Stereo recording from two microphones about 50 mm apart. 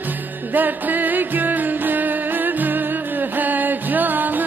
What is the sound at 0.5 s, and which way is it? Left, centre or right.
Music, right.